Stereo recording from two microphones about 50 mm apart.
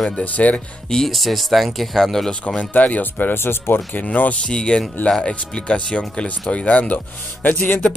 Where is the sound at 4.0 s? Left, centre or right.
Left.